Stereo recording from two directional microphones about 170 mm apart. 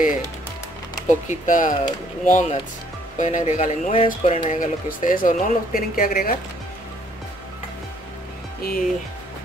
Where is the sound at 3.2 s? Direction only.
45° left (ahead or behind).